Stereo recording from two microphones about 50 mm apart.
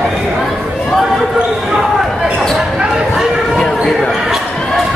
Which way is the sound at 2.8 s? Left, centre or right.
Centre.